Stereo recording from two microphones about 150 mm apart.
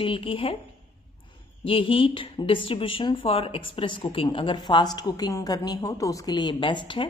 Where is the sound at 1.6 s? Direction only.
35° left (ahead or behind).